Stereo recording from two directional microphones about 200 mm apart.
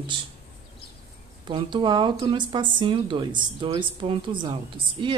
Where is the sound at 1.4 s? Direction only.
25° right (ahead or behind).